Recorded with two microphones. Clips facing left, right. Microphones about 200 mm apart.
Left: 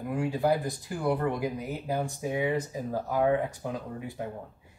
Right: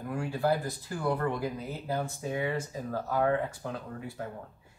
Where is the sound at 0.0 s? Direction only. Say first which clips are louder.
Left 3 dB; 20° left (ahead or behind).